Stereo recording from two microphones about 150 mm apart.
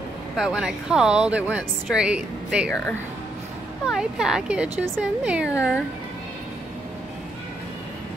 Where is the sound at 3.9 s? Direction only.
5° right (ahead or behind).